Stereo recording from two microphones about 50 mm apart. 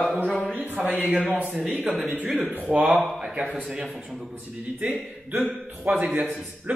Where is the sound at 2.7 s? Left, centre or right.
Right.